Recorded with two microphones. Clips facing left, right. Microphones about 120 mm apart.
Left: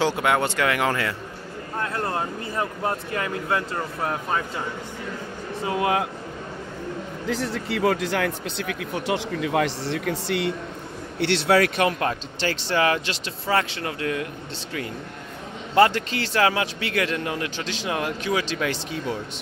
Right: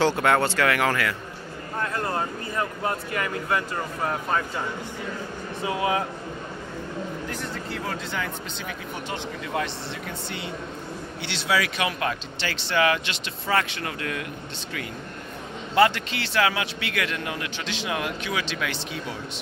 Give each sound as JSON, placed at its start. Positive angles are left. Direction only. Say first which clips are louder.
{"t": 0.0, "sound": "speech", "louder": "right 1 dB", "side_deg": 10}
{"t": 2.5, "sound": "speech", "louder": "left 1 dB", "side_deg": 25}
{"t": 7.2, "sound": "speech", "louder": "left 6 dB", "side_deg": 85}
{"t": 11.1, "sound": "speech", "louder": "left 7 dB", "side_deg": 65}
{"t": 12.0, "sound": "speech", "louder": "left 3 dB", "side_deg": 40}
{"t": 15.7, "sound": "speech", "louder": "left 2 dB", "side_deg": 35}